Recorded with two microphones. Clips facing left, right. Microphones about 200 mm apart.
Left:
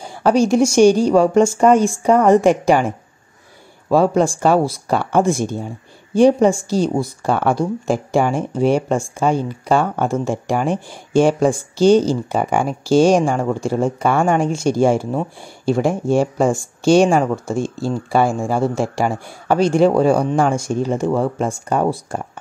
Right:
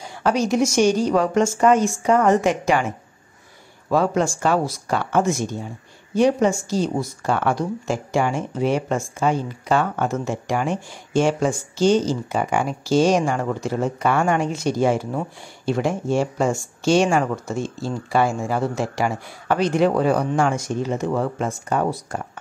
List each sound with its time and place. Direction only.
0.0 s a man's voice: 30° left (ahead or behind)
3.9 s a man's voice: 30° left (ahead or behind)
15.8 s speech: 50° left (ahead or behind)
17.0 s a man's voice: 35° left (ahead or behind)
18.1 s speech: 50° left (ahead or behind)
18.4 s a man's voice: 30° left (ahead or behind)